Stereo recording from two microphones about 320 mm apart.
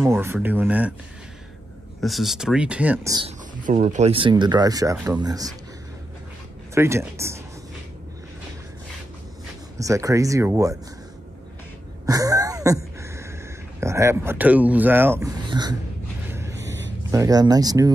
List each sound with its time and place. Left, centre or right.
0.0 s speech: centre
2.0 s speech: centre
6.7 s speech: centre
9.8 s speech: centre
12.1 s a sound: centre
13.7 s speech: centre
16.3 s a sound: centre
17.1 s speech: centre